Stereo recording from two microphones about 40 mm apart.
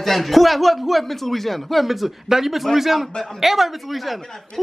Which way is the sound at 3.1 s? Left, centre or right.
Centre.